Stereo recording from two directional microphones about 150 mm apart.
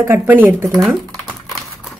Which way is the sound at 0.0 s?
15° right (ahead or behind).